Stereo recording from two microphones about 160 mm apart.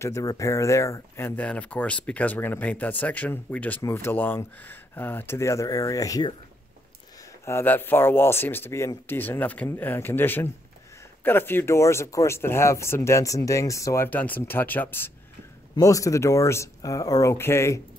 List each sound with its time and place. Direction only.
0.0 s speech: 20° left (ahead or behind)
7.4 s speech: 15° left (ahead or behind)